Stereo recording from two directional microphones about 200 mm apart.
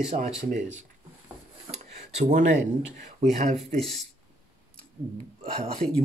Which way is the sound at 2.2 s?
40° right (ahead or behind).